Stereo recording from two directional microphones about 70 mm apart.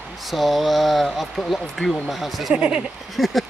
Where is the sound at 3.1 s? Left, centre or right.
Centre.